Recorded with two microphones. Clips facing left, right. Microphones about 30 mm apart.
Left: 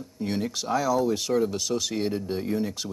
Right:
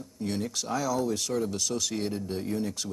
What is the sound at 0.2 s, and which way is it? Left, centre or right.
Speech, centre.